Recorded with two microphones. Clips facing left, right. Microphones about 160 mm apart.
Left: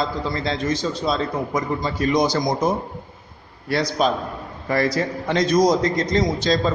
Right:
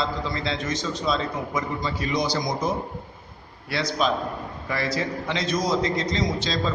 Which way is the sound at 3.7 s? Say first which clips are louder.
Left 4 dB; 40° left (ahead or behind).